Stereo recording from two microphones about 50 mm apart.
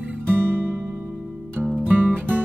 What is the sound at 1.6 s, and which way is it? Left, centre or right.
Music, right.